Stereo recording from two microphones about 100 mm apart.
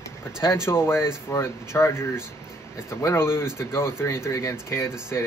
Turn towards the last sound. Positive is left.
turn(degrees=25)  # may be behind; listen again after turning